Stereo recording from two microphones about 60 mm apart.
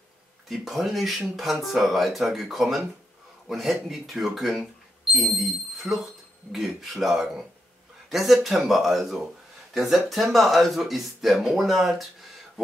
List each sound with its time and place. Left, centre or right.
0.5 s speech: centre